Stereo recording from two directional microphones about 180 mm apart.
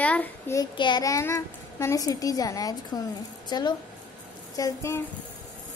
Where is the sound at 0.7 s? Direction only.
25° left (ahead or behind).